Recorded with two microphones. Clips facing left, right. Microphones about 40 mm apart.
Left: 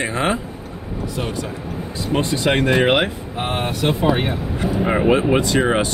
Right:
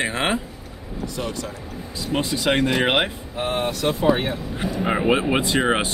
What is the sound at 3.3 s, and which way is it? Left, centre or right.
Speech, left.